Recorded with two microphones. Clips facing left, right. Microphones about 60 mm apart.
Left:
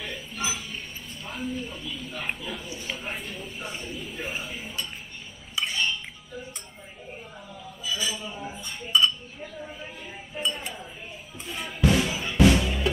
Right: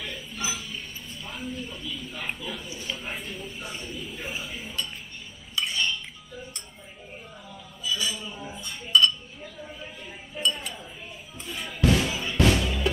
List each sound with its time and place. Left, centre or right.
1.2 s a sound: centre
2.4 s speech: centre
5.6 s dishes: centre
7.8 s a sound: centre
8.2 s chink: centre
11.3 s music: centre